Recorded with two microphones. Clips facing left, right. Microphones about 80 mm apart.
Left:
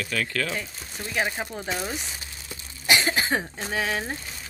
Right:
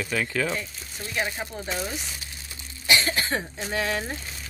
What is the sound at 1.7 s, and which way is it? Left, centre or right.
Speech, centre.